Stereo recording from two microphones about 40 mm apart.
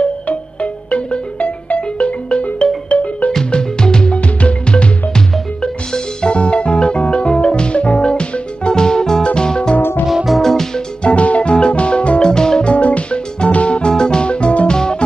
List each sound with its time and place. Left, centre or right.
0.3 s music: left
3.5 s music: left
9.8 s music: left
10.0 s music: centre
10.4 s music: centre
11.1 s music: left
14.7 s music: centre